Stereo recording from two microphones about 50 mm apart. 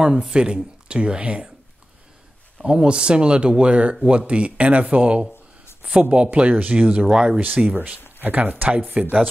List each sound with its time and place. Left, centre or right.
0.0 s speech: centre
2.6 s speech: centre
6.5 s speech: right; by 7.3 s centre
7.3 s speech: right